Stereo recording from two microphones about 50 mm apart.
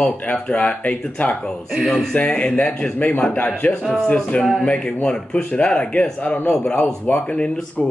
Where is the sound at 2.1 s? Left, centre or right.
Left.